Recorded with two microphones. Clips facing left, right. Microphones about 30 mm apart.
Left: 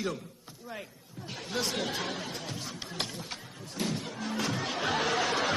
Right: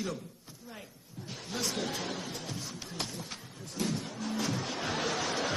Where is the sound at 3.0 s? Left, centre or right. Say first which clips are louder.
Left 2 dB; left.